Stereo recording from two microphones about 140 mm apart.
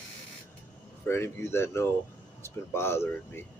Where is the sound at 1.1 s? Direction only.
20° left (ahead or behind).